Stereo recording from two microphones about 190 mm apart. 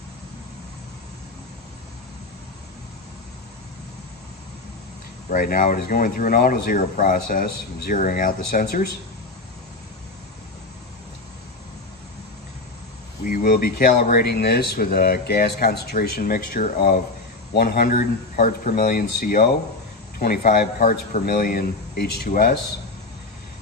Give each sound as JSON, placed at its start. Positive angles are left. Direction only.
{"t": 5.3, "sound": "speech", "side_deg": 45}
{"t": 13.2, "sound": "speech", "side_deg": 50}